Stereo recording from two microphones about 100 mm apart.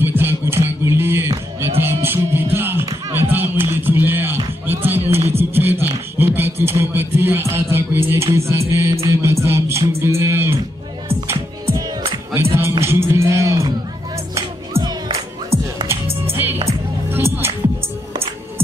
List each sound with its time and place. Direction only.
0.0 s music: 20° right (ahead or behind)
12.5 s music: 25° right (ahead or behind)
14.8 s music: 45° right (ahead or behind)
16.3 s music: 20° right (ahead or behind)